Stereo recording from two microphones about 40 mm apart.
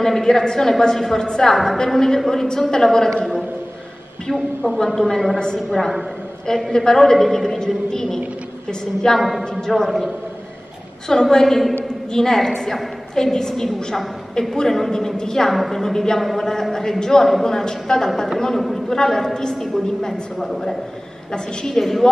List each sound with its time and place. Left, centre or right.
0.0 s a woman's voice: centre
4.3 s a woman's voice: centre
15.5 s a woman's voice: centre